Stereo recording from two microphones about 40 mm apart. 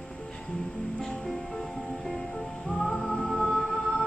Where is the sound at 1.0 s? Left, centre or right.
Centre.